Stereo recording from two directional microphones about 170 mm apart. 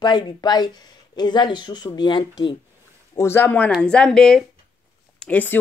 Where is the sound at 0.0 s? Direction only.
25° left (ahead or behind).